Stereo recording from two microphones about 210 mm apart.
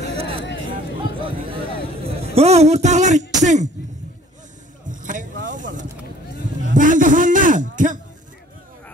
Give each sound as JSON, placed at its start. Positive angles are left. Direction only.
{"t": 0.2, "sound": "a sound", "side_deg": -25}
{"t": 2.0, "sound": "speech", "side_deg": -30}
{"t": 4.8, "sound": "vehicle", "side_deg": -40}
{"t": 6.7, "sound": "a man's voice", "side_deg": -40}